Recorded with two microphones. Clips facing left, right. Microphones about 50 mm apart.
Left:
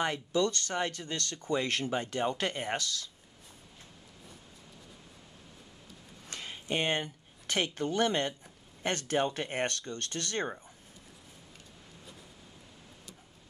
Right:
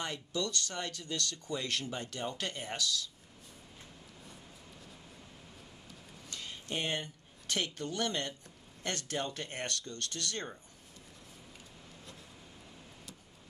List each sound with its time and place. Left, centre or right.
0.0 s speech: left
6.3 s speech: left